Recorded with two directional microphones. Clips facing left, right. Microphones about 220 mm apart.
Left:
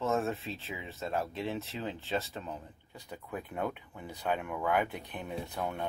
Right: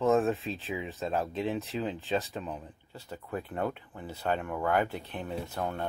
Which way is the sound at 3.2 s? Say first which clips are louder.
Right 3 dB; 5° left (ahead or behind).